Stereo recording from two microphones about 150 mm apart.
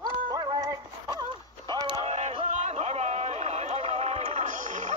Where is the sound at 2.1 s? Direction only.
45° right (ahead or behind).